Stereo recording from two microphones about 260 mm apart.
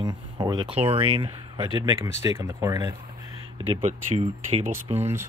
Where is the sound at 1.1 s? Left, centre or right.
Centre.